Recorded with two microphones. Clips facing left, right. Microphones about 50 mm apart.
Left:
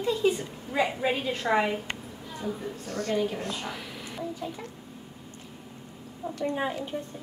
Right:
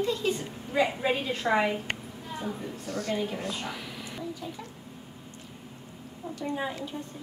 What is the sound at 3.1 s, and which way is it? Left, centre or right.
Speech, centre.